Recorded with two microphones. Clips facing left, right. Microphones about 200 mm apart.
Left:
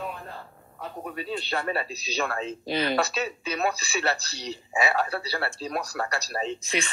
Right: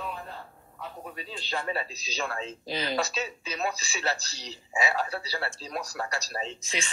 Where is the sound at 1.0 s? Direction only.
60° left (ahead or behind).